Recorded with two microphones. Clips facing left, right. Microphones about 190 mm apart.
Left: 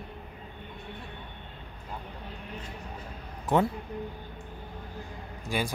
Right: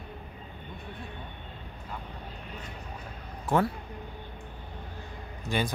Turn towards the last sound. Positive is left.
turn(degrees=10)  # may be behind; listen again after turning